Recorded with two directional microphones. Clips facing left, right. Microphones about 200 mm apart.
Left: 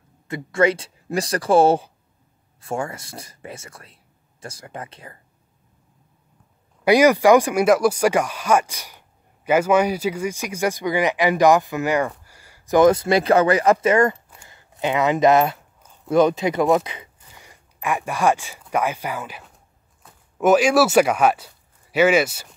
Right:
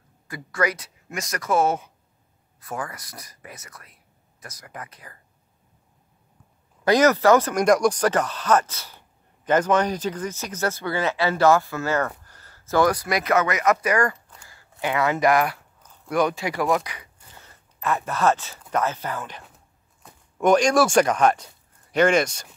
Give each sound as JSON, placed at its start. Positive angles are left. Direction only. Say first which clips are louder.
{"t": 0.3, "sound": "speech", "louder": "left 7 dB", "side_deg": 25}
{"t": 6.8, "sound": "speech", "louder": "left 3 dB", "side_deg": 10}